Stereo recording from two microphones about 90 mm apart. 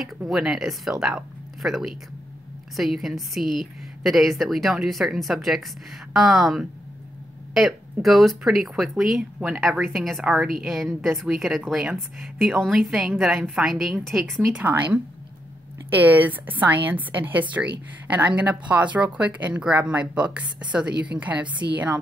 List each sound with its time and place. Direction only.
0.3 s a woman's voice: 5° right (ahead or behind)
14.5 s a woman's voice: 20° right (ahead or behind)